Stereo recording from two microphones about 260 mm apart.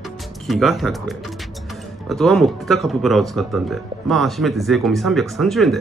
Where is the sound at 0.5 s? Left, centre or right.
Centre.